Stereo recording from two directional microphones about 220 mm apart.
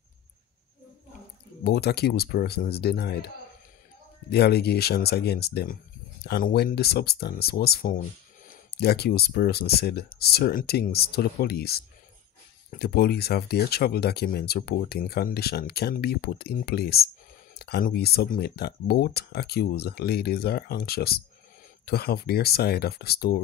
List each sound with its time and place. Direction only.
1.6 s speech: 45° left (ahead or behind)
4.3 s speech: 45° left (ahead or behind)